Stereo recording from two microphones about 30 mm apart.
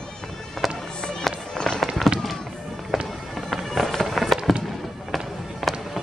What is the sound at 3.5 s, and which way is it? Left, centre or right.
Fireworks, centre.